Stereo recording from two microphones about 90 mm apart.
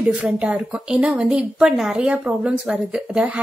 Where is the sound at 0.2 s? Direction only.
15° right (ahead or behind).